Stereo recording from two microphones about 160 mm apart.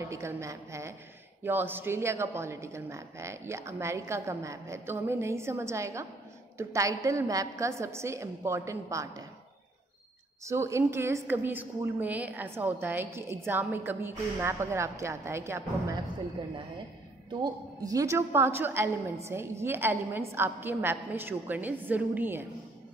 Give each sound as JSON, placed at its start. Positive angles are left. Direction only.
{"t": 0.0, "sound": "a woman's voice", "side_deg": -15}
{"t": 10.4, "sound": "a woman's voice", "side_deg": -15}
{"t": 17.4, "sound": "a woman's voice", "side_deg": -25}